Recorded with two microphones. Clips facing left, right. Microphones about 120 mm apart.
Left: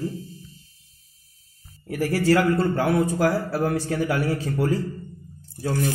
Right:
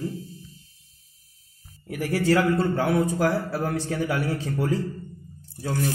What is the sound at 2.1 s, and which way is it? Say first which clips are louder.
A man's voice: left 1 dB; centre (ahead or behind).